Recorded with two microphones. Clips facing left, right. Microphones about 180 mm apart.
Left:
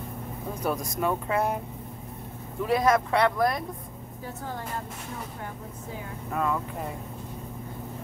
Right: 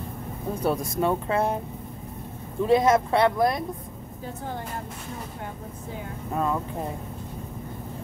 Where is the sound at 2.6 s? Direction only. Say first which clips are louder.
Right 3 dB; 25° right (ahead or behind).